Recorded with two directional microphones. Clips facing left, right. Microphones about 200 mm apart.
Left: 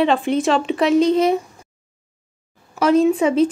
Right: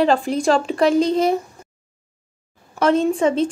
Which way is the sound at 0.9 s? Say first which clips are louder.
Left 7 dB; 30° right (ahead or behind).